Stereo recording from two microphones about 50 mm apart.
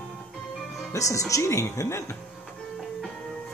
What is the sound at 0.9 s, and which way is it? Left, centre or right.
Speech, left.